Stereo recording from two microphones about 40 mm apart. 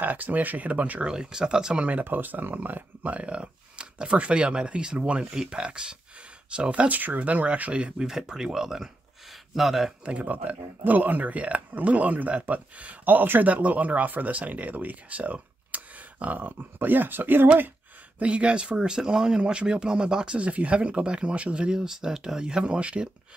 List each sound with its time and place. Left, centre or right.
0.0 s speech: right
1.0 s speech: centre
2.0 s speech: right
3.3 s speech: right
6.7 s speech: right
7.7 s speech: right
8.1 s speech: centre
10.0 s speech: right
13.5 s speech: right
18.2 s speech: right
20.3 s speech: right
21.7 s speech: centre